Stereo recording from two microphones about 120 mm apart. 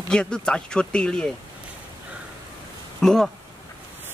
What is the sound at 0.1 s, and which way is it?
Speech, 10° left (ahead or behind).